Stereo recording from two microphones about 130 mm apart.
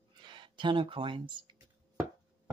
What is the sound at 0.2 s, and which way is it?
Speech, 35° right (ahead or behind).